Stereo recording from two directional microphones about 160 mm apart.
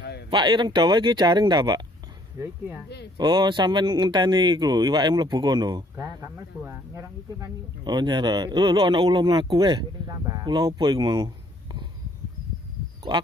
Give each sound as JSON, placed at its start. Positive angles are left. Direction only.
{"t": 0.3, "sound": "a man's voice", "side_deg": -30}
{"t": 2.3, "sound": "speech", "side_deg": -15}
{"t": 3.2, "sound": "a man's voice", "side_deg": -25}
{"t": 13.1, "sound": "a man's voice", "side_deg": -30}